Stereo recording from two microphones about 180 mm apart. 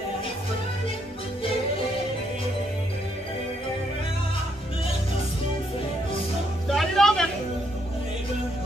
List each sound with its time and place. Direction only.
6.7 s music: centre (ahead or behind)